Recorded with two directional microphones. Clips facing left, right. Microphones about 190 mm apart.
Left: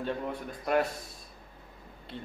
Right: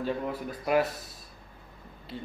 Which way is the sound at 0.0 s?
5° right (ahead or behind).